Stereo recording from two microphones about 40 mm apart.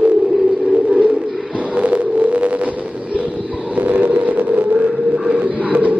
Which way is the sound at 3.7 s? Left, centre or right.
Right.